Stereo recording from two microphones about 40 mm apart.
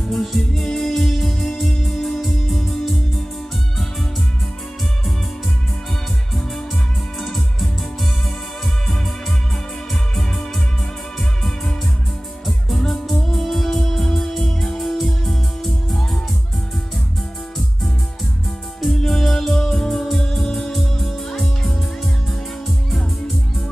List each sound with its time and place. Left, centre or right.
0.0 s music: centre
6.3 s music: centre
10.1 s music: centre
14.8 s music: centre
18.9 s music: centre
19.9 s music: centre